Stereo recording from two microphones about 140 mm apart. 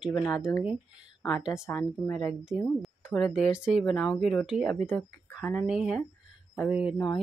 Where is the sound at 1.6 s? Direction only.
20° left (ahead or behind).